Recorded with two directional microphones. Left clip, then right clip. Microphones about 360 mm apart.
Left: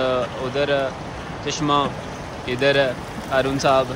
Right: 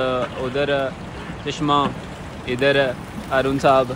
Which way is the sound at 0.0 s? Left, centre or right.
Centre.